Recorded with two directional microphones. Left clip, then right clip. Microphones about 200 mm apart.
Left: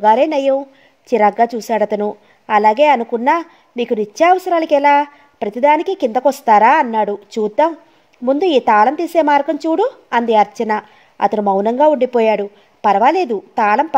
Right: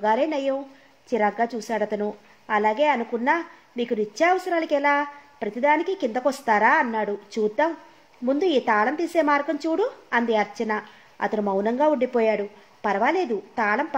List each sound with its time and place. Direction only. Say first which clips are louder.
0.0 s a woman's voice: left 10 dB; 40° left (ahead or behind)